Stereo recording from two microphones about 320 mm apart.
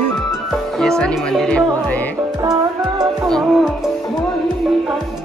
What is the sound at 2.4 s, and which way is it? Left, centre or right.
Music, centre.